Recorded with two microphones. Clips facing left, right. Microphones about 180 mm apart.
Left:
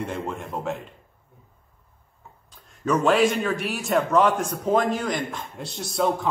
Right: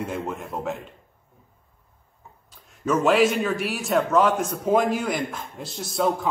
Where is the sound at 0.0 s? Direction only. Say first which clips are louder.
Even; 5° right (ahead or behind).